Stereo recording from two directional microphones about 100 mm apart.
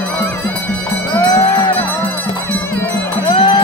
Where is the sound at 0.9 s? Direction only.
35° left (ahead or behind).